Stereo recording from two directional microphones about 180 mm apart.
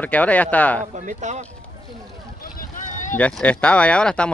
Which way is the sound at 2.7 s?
45° left (ahead or behind).